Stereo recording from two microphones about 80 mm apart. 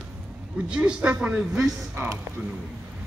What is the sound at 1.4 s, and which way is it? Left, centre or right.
Speech, centre.